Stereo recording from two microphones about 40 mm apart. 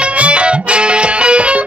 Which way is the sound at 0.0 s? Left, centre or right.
Right.